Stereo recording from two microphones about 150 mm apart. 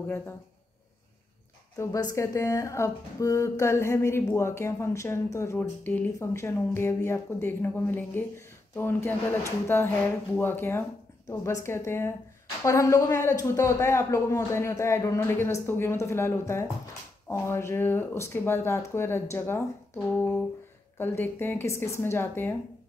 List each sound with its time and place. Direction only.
1.8 s speech: 25° left (ahead or behind)
21.0 s speech: 15° left (ahead or behind)